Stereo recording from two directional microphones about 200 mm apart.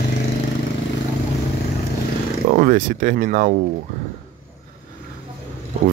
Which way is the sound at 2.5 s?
45° right (ahead or behind).